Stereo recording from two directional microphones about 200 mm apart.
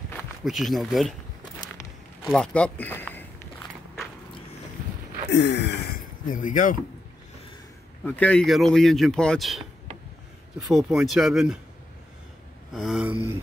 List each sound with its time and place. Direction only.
0.1 s speech: centre (ahead or behind)
2.2 s speech: 5° left (ahead or behind)
5.3 s speech: 55° left (ahead or behind); by 6.8 s 40° left (ahead or behind)
8.0 s speech: 5° left (ahead or behind)
12.7 s speech: centre (ahead or behind)